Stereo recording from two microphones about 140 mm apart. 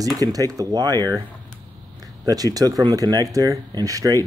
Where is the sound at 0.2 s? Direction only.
25° right (ahead or behind).